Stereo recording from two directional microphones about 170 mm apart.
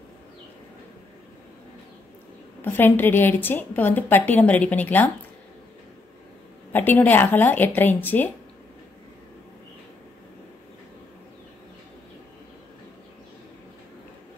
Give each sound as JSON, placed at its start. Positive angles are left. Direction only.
{"t": 2.6, "sound": "a woman's voice", "side_deg": 10}
{"t": 6.7, "sound": "a woman's voice", "side_deg": 10}